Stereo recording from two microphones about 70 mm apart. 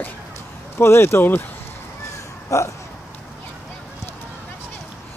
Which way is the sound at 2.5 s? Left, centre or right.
Left.